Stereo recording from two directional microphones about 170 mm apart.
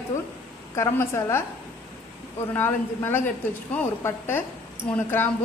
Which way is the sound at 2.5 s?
10° left (ahead or behind).